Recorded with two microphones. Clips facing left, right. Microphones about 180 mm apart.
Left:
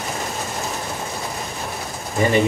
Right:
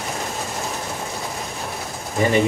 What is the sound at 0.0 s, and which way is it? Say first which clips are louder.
Train: left 1 dB; centre (ahead or behind).